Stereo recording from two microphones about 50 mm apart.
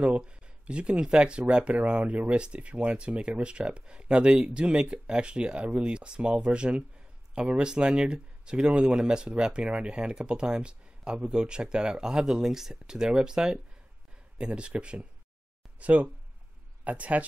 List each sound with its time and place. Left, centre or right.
0.0 s speech: right